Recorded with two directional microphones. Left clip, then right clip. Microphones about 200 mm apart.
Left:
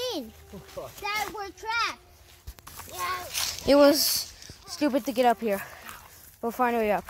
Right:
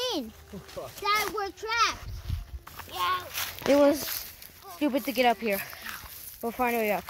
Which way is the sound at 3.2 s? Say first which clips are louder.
Left 2 dB; centre (ahead or behind).